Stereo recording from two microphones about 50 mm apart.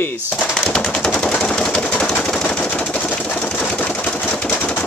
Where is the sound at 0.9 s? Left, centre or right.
Centre.